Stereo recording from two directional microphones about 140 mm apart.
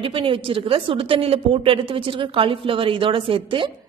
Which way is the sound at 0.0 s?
40° right (ahead or behind).